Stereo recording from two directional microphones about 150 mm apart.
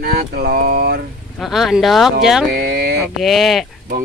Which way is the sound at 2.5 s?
90° right.